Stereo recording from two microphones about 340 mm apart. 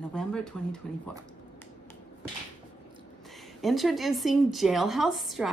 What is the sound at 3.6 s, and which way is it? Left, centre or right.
Speech, centre.